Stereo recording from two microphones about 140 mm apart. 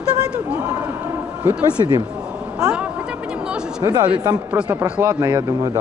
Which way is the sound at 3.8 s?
30° right (ahead or behind).